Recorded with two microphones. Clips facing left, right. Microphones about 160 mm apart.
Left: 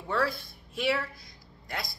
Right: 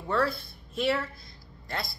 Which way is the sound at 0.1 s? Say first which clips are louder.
Right 2 dB; 10° left (ahead or behind).